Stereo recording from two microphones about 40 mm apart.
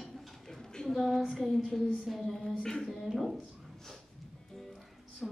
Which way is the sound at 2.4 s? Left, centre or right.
Centre.